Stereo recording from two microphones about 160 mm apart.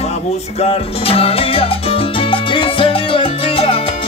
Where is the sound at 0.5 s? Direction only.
40° left (ahead or behind).